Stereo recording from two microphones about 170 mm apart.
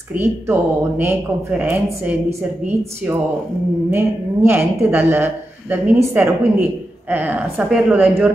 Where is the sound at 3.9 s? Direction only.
15° right (ahead or behind).